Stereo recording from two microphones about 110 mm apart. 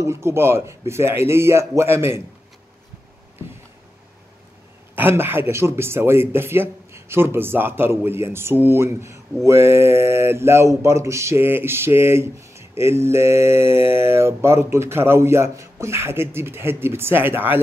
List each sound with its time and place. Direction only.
0.0 s speech: 25° right (ahead or behind)
4.9 s speech: 20° right (ahead or behind)